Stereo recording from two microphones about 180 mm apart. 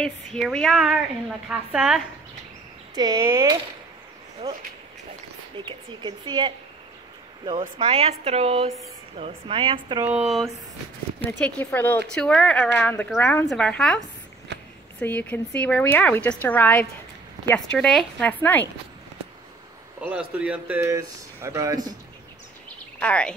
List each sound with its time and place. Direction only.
0.0 s speech: 5° left (ahead or behind)
2.9 s speech: 20° right (ahead or behind)
7.5 s a woman's voice: 35° right (ahead or behind)
10.0 s speech: 5° right (ahead or behind)
11.2 s speech: 10° left (ahead or behind)
14.5 s a sound: 75° right (ahead or behind)
15.0 s speech: 10° left (ahead or behind)
20.0 s speech: 5° right (ahead or behind)
22.9 s speech: 5° left (ahead or behind)